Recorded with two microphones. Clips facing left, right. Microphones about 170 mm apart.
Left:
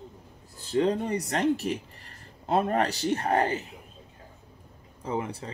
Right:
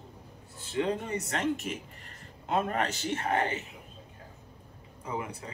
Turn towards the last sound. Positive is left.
turn(degrees=30)  # may be behind; listen again after turning